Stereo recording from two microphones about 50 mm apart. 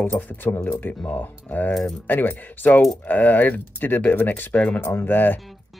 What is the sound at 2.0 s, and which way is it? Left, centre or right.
Speech, left.